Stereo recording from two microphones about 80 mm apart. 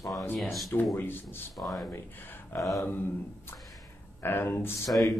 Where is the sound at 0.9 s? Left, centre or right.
Left.